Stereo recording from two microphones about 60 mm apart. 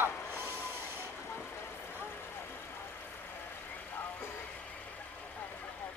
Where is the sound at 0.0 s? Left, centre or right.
Right.